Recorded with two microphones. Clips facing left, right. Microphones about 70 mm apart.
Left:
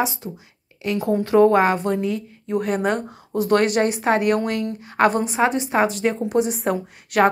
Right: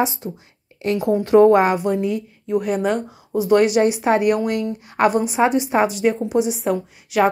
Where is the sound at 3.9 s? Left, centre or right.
Left.